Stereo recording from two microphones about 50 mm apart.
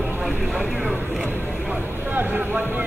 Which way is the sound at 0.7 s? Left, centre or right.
Centre.